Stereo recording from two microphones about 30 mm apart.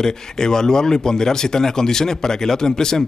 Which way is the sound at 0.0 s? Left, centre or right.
Centre.